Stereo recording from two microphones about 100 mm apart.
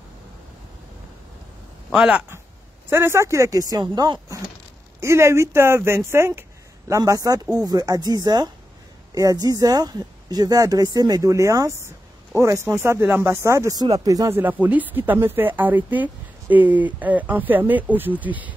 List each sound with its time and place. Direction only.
1.9 s speech: 10° right (ahead or behind)
2.9 s speech: 25° right (ahead or behind); by 4.2 s 45° right (ahead or behind)
5.0 s speech: 25° right (ahead or behind)
14.3 s speech: 15° right (ahead or behind)